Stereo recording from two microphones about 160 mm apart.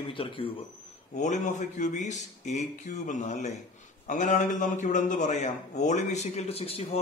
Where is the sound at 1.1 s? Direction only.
50° left (ahead or behind).